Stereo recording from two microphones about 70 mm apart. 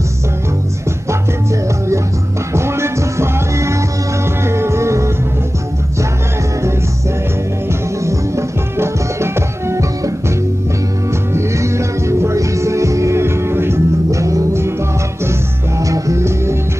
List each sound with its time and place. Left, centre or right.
2.5 s music: right
8.0 s music: right
11.3 s music: right
15.8 s music: right